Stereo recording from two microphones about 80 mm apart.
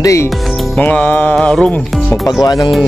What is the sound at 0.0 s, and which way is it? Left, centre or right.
Speech, left.